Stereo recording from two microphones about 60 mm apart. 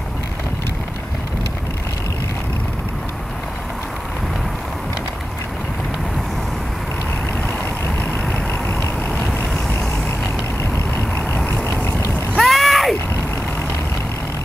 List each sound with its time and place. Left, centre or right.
8.0 s vehicle: left
11.1 s vehicle: left
12.4 s boat: centre